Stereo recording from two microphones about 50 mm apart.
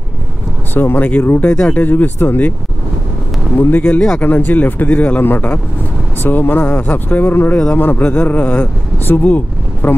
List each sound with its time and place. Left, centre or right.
0.7 s speech: left
1.9 s speech: left
3.8 s speech: centre
4.2 s speech: left